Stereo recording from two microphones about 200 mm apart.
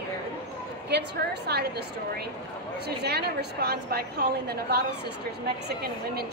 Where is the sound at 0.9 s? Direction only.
55° right (ahead or behind).